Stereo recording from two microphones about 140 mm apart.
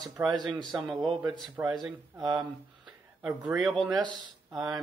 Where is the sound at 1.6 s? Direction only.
30° right (ahead or behind).